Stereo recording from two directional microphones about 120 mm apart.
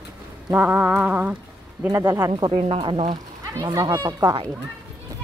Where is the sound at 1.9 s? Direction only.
20° right (ahead or behind).